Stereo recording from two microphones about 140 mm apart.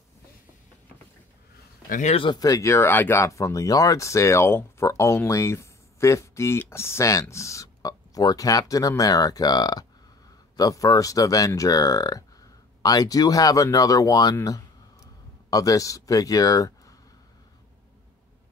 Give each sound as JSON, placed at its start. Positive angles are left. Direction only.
{"t": 1.9, "sound": "speech", "side_deg": 60}
{"t": 2.1, "sound": "speech", "side_deg": 35}